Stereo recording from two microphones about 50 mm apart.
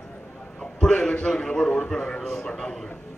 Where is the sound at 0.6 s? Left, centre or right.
Centre.